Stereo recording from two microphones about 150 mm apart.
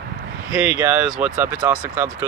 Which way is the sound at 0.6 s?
10° right (ahead or behind).